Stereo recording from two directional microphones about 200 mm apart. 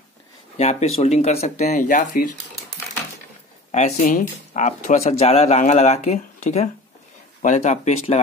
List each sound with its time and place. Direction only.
0.6 s speech: 35° left (ahead or behind)
3.7 s speech: 40° left (ahead or behind)